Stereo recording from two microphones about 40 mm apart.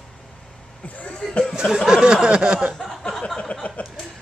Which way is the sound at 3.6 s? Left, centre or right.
Left.